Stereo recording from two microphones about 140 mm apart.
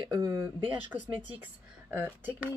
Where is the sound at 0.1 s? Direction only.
25° right (ahead or behind).